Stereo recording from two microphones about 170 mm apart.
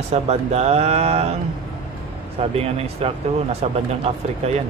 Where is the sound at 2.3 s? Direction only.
35° right (ahead or behind).